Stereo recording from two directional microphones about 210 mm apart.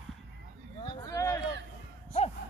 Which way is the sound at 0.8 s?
20° left (ahead or behind).